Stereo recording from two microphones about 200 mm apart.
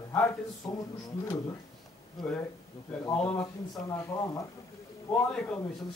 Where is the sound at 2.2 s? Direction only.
Centre (ahead or behind).